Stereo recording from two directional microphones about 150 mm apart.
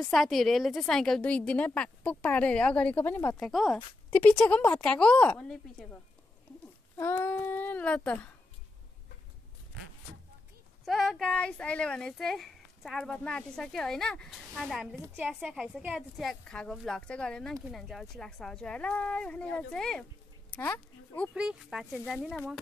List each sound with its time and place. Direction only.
0.0 s a woman's voice: centre (ahead or behind)
3.3 s a woman's voice: centre (ahead or behind)
7.0 s a woman's voice: 15° left (ahead or behind)
10.9 s speech: centre (ahead or behind)
21.3 s speech: 5° right (ahead or behind)